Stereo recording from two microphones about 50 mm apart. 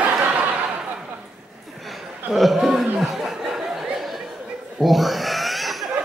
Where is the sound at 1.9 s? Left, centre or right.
Centre.